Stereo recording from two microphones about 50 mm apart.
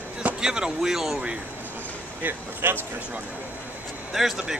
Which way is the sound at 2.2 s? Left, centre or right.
Right.